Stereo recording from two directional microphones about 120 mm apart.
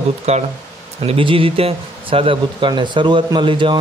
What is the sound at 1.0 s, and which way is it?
Speech, 50° right (ahead or behind).